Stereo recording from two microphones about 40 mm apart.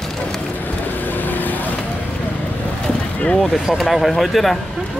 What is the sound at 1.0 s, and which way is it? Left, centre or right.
Vehicle, left.